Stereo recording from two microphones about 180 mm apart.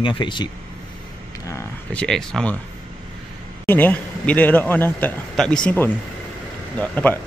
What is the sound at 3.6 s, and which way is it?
Speech, 10° left (ahead or behind).